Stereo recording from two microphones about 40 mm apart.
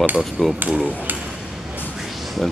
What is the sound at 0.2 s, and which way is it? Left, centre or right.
Speech, centre.